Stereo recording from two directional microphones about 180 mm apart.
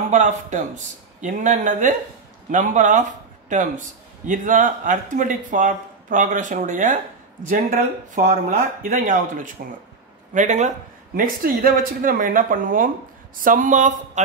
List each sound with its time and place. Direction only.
0.1 s a man's voice: 40° right (ahead or behind)
4.3 s a man's voice: 45° right (ahead or behind)
11.1 s a man's voice: 50° right (ahead or behind)